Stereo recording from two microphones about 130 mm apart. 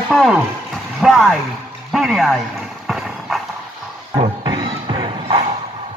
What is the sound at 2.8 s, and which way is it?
Clip-clop, centre (ahead or behind).